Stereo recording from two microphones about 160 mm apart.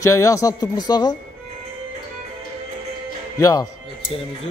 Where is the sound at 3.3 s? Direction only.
25° left (ahead or behind).